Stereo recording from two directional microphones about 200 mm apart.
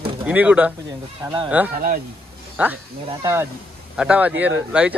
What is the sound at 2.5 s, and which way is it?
Speech, 10° right (ahead or behind).